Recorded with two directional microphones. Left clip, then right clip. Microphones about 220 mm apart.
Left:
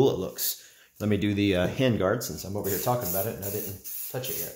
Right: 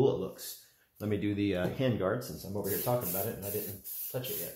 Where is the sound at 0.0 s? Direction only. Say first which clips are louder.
Left 5 dB; 40° left (ahead or behind).